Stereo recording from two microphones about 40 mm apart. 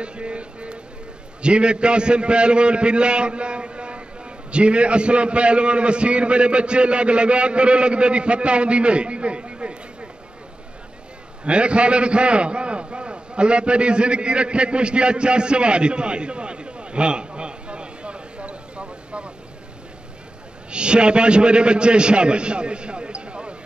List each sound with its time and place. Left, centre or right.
0.0 s a man's voice: right
11.4 s a man's voice: right
20.7 s a man's voice: right